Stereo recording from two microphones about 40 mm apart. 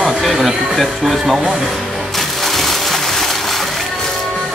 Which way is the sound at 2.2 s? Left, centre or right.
Centre.